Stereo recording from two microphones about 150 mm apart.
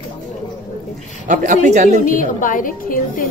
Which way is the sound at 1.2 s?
55° right (ahead or behind).